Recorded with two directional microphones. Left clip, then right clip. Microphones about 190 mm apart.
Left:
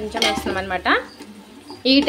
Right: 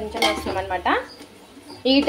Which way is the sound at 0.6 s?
20° left (ahead or behind).